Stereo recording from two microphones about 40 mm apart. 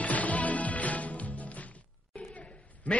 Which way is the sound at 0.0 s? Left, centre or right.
Left.